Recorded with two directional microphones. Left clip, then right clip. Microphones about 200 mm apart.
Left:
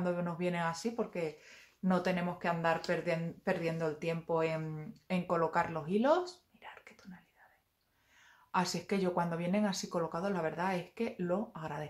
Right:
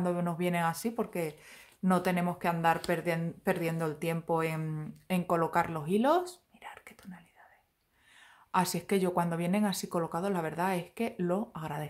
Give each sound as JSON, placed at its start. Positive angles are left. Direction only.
{"t": 0.0, "sound": "speech", "side_deg": -30}
{"t": 8.5, "sound": "speech", "side_deg": -30}